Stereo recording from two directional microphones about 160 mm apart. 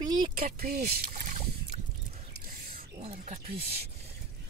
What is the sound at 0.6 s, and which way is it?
Speech, 70° right (ahead or behind).